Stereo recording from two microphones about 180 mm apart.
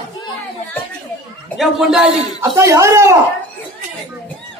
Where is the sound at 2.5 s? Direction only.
15° right (ahead or behind).